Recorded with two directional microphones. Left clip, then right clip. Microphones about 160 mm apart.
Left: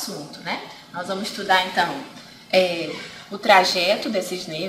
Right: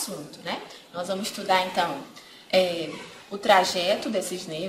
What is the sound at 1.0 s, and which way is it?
Speech, 40° right (ahead or behind).